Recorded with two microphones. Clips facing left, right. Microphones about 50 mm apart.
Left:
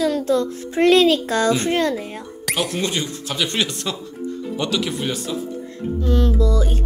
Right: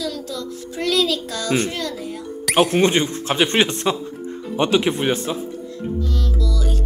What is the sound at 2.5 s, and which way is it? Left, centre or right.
Speech, right.